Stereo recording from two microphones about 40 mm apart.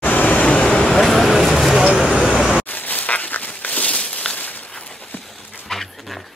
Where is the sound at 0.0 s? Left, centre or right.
Left.